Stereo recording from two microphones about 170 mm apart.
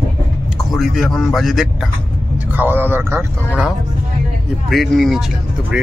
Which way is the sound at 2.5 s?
10° right (ahead or behind).